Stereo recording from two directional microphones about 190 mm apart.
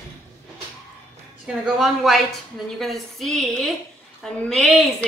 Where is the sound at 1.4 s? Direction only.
5° right (ahead or behind).